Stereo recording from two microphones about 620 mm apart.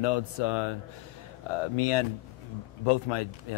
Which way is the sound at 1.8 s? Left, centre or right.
Left.